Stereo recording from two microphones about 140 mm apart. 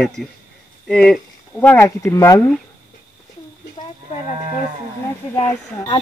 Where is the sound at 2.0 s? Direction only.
20° left (ahead or behind).